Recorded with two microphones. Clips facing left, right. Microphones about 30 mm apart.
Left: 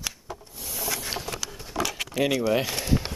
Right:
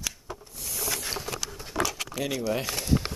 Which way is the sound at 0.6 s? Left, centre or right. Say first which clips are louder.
Left 1 dB; centre.